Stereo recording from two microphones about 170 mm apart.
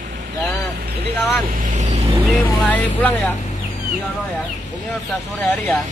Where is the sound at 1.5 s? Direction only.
50° right (ahead or behind).